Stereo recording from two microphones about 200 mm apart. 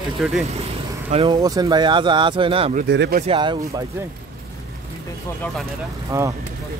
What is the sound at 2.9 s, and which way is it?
Speech, 55° right (ahead or behind).